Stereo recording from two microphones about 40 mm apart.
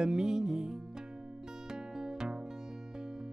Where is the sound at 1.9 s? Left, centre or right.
Centre.